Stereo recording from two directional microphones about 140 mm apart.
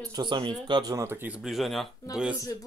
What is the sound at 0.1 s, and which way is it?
Speech, 35° right (ahead or behind).